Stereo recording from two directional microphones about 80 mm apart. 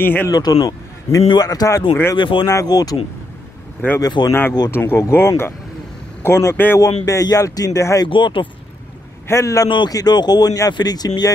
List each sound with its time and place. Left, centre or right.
0.0 s speech: left
0.3 s a man's voice: left
2.1 s speech: left
2.4 s a man's voice: left
4.0 s speech: left
4.3 s speech: left
6.5 s speech: left
6.8 s a man's voice: left
8.0 s speech: left
9.3 s a man's voice: left
9.8 s speech: left